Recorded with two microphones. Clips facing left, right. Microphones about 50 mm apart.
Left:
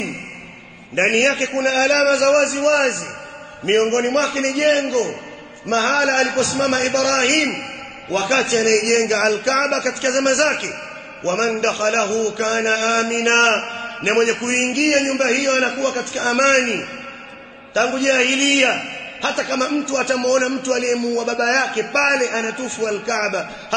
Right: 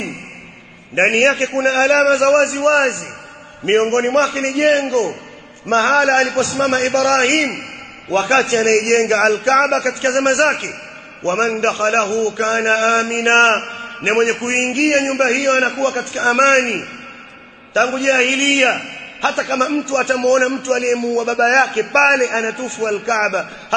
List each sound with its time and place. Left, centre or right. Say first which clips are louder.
0.9 s a man's voice: right 3 dB; right